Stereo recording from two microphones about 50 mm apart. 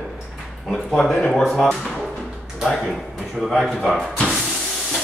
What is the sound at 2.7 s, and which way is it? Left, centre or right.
Speech, centre.